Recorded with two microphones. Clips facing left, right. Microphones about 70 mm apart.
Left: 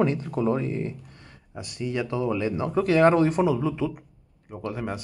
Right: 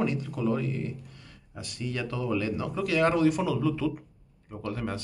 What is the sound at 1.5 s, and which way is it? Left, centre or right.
A man's voice, centre.